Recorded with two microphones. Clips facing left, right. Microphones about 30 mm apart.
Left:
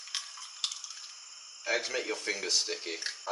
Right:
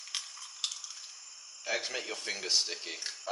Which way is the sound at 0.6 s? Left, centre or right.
Centre.